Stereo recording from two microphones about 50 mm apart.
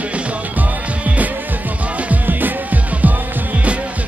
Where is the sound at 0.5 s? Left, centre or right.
Right.